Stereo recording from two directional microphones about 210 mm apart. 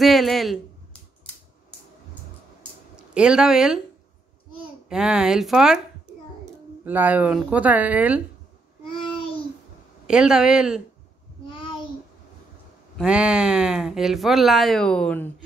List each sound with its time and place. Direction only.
0.0 s speech: centre (ahead or behind)
3.2 s speech: 5° right (ahead or behind)
4.8 s speech: 5° right (ahead or behind)
6.8 s speech: 10° right (ahead or behind)
8.8 s babbling: 25° left (ahead or behind)
10.0 s speech: 5° right (ahead or behind)
12.9 s speech: 5° right (ahead or behind)